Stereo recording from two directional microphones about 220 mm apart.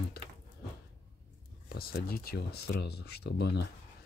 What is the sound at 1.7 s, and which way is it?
Speech, 45° left (ahead or behind).